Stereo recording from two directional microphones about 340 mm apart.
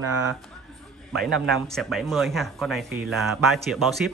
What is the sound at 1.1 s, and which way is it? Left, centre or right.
Speech, centre.